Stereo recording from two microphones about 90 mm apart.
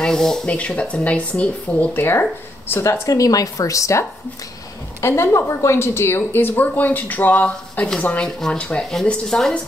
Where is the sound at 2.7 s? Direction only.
35° left (ahead or behind).